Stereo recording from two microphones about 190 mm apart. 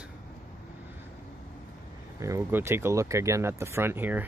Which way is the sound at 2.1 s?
15° right (ahead or behind).